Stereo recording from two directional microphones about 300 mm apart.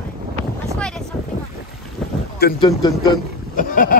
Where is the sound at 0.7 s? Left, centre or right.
Centre.